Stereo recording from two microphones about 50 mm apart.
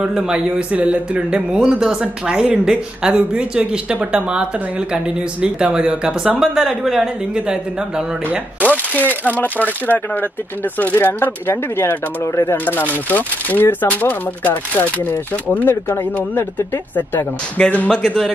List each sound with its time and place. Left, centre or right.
0.0 s a man's voice: centre
0.7 s a man's voice: right; by 7.1 s centre
8.6 s a sound: left
9.3 s speech: left
12.6 s speech: left
17.8 s speech: centre